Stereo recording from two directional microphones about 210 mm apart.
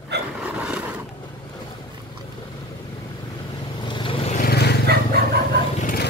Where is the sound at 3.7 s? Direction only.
20° left (ahead or behind).